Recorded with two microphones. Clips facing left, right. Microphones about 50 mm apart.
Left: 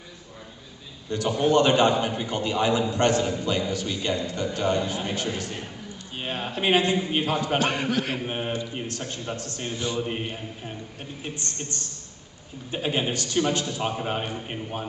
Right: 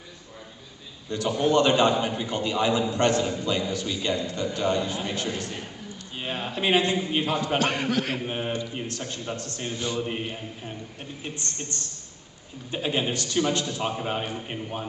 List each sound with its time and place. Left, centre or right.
1.2 s a man's voice: centre
7.5 s a man's voice: left
8.2 s a man's voice: centre
12.7 s a man's voice: centre